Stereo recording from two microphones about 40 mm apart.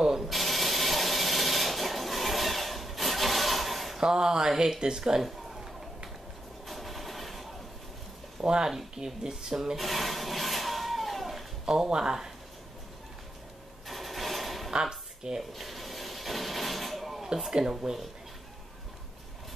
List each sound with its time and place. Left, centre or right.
0.0 s ratchet: centre
0.3 s wood: centre
4.0 s speech: centre
6.7 s vehicle: centre
8.4 s speech: centre
9.8 s a sound: centre
11.6 s speech: centre
13.8 s sewing machine: centre
14.7 s a sound: centre
15.5 s a sound: centre
17.5 s speech: centre